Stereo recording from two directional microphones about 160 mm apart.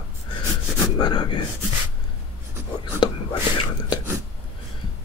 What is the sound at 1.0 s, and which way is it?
Speech, 30° left (ahead or behind).